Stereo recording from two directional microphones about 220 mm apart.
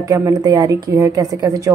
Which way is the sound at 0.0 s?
15° right (ahead or behind).